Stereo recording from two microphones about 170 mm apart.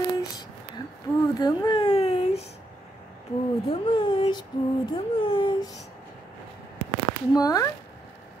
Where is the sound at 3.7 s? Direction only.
30° left (ahead or behind).